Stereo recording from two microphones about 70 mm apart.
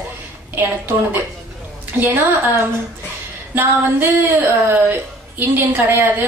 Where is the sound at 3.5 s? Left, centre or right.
Right.